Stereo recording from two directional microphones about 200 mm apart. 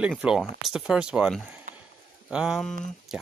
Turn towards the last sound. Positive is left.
turn(degrees=0)  # may be behind; listen again after turning